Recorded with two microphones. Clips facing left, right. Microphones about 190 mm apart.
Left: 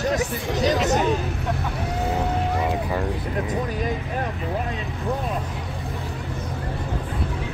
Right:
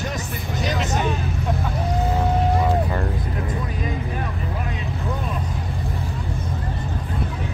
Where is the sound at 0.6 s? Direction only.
35° left (ahead or behind).